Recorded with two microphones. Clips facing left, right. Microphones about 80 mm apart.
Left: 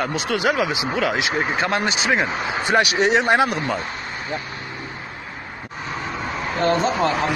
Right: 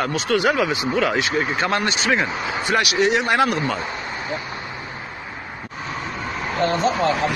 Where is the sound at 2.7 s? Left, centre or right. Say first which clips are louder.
Left 1 dB; left.